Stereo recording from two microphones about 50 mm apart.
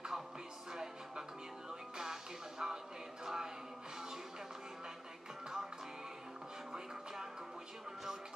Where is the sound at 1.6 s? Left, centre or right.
Centre.